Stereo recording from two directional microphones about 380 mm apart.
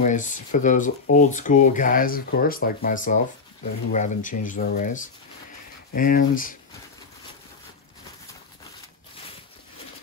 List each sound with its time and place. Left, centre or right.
0.0 s speech: centre